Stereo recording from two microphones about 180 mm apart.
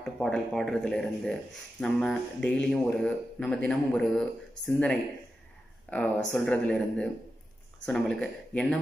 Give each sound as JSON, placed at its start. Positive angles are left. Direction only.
{"t": 0.0, "sound": "speech", "side_deg": 5}
{"t": 5.9, "sound": "speech", "side_deg": 5}